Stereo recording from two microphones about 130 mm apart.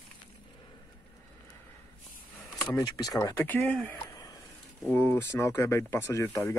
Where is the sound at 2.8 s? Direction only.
30° left (ahead or behind).